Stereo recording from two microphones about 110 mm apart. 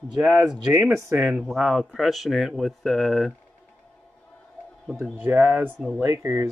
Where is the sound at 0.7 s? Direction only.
20° right (ahead or behind).